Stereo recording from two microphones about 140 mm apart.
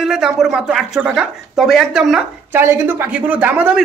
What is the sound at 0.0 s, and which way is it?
Speech, 5° right (ahead or behind).